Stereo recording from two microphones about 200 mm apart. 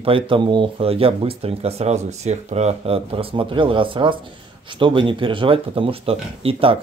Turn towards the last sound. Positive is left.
turn(degrees=-25)  # may be behind; listen again after turning